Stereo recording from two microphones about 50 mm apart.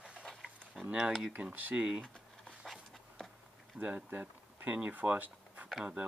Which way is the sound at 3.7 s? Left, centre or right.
Right.